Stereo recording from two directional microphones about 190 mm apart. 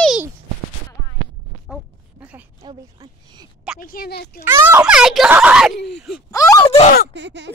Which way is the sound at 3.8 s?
50° left (ahead or behind).